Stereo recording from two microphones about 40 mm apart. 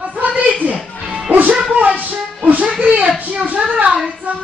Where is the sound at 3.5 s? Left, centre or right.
Right.